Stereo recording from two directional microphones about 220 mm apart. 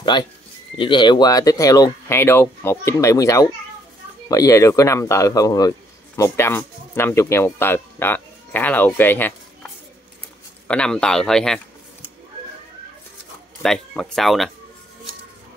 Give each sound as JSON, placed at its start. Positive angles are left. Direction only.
{"t": 0.1, "sound": "a man's voice", "side_deg": 20}
{"t": 10.7, "sound": "speech", "side_deg": 5}
{"t": 13.6, "sound": "speech", "side_deg": 0}